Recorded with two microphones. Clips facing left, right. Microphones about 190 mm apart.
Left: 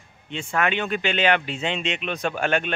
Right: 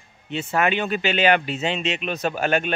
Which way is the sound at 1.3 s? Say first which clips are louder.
Right 2 dB; 40° right (ahead or behind).